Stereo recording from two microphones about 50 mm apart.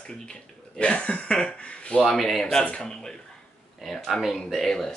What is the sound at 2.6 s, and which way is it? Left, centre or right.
Speech, centre.